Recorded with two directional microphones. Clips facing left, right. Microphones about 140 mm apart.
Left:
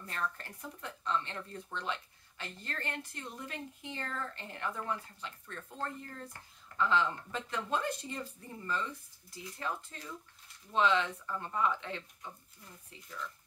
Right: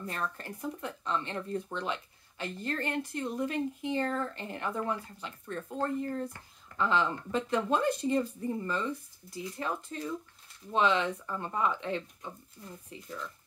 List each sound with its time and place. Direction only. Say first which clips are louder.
0.0 s speech: right 3 dB; 20° right (ahead or behind)